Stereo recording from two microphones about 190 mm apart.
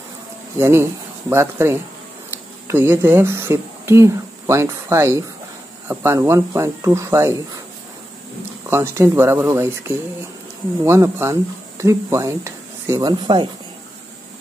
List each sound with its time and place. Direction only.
0.6 s speech: 15° right (ahead or behind)
8.6 s speech: 15° right (ahead or behind)